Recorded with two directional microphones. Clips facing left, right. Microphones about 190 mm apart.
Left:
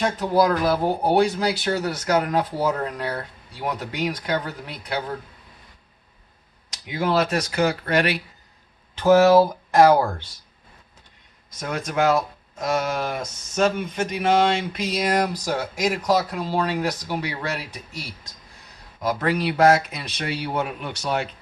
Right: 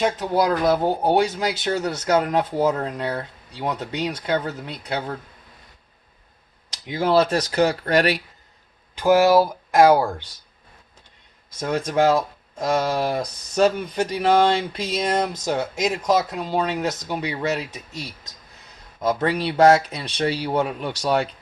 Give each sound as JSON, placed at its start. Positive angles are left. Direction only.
{"t": 0.0, "sound": "speech", "side_deg": -20}
{"t": 6.9, "sound": "speech", "side_deg": -30}
{"t": 8.9, "sound": "speech", "side_deg": -10}
{"t": 11.7, "sound": "speech", "side_deg": -30}